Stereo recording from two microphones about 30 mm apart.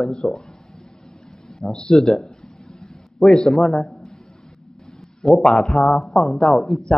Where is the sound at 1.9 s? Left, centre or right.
Centre.